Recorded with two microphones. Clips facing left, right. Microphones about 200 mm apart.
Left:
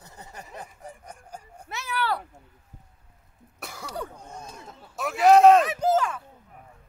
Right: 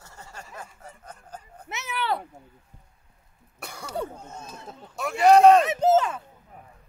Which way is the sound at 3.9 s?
25° right (ahead or behind).